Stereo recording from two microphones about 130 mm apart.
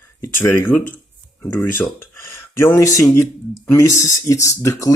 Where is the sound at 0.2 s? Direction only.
20° left (ahead or behind).